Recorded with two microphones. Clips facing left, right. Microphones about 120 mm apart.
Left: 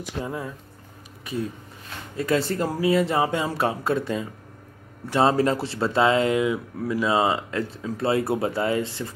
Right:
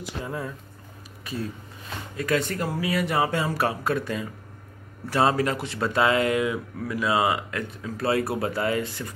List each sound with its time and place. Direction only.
0.2 s speech: 20° left (ahead or behind)